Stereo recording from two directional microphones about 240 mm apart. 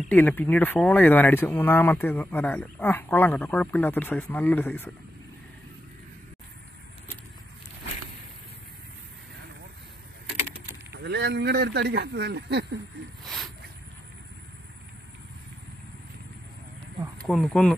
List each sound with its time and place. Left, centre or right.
0.0 s speech: centre
10.9 s speech: right
13.2 s a sound: centre
17.3 s speech: centre